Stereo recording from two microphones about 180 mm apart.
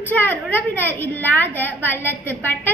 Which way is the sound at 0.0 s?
10° left (ahead or behind).